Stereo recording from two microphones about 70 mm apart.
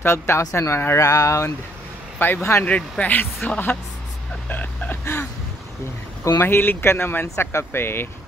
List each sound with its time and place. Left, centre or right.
0.0 s speech: left
0.9 s speech: left
2.1 s speech: left
2.6 s speech: left
4.5 s a sound: left
6.4 s speech: left